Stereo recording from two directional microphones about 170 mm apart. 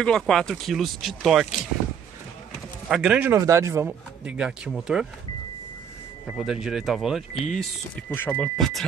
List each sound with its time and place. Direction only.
0.0 s speech: 5° left (ahead or behind)
2.9 s speech: 5° right (ahead or behind)
6.3 s speech: 5° right (ahead or behind)
8.1 s speech: 10° left (ahead or behind)
8.5 s speech: centre (ahead or behind)